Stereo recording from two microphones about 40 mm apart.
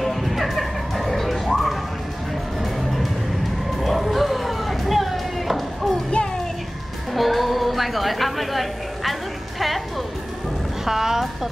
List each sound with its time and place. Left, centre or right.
0.0 s music: centre
6.2 s music: left
7.2 s a sound: centre
10.9 s music: centre